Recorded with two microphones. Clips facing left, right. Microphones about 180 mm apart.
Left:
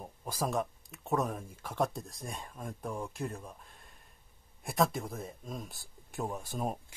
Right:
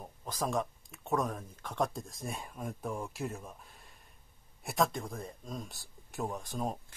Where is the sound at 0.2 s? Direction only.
10° left (ahead or behind).